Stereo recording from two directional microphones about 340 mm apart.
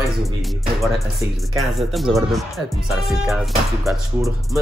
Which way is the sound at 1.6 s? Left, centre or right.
Centre.